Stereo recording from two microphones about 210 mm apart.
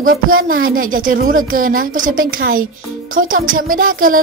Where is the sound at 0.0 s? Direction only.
40° right (ahead or behind).